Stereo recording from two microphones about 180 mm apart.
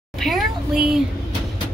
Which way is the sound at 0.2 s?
Centre (ahead or behind).